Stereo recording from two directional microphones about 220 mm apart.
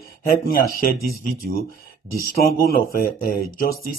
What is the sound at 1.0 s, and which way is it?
Speech, 45° right (ahead or behind).